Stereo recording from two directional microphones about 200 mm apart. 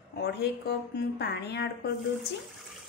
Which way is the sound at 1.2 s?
55° left (ahead or behind).